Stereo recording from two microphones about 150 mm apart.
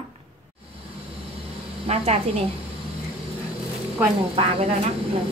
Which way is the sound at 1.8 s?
45° right (ahead or behind).